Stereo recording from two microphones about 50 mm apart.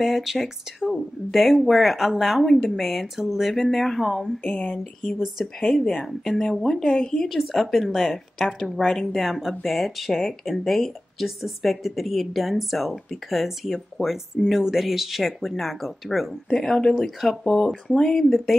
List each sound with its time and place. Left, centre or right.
0.0 s a woman's voice: centre
4.5 s speech: left
5.2 s a woman's voice: centre
7.2 s a woman's voice: centre
16.4 s a woman's voice: centre
18.5 s a woman's voice: centre